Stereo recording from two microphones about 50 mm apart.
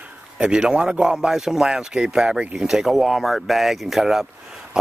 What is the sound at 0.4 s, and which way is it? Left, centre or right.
A man's voice, centre.